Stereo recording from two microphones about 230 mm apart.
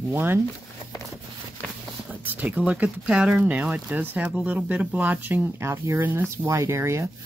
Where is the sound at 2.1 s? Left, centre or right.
Centre.